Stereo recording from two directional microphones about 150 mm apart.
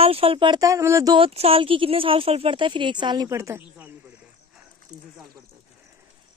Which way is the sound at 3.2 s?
20° right (ahead or behind).